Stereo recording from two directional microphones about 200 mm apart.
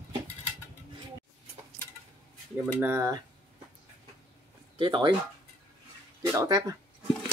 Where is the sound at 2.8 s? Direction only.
10° right (ahead or behind).